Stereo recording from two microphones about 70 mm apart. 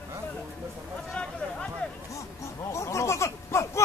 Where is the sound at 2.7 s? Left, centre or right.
Left.